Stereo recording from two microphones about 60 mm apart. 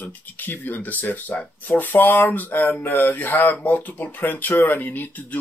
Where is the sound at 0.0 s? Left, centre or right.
Left.